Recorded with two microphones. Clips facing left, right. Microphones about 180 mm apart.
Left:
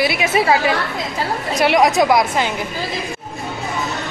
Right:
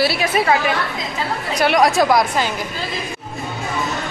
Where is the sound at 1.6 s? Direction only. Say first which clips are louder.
Left 1 dB; 25° left (ahead or behind).